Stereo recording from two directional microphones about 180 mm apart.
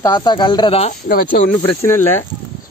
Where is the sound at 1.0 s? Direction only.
55° left (ahead or behind).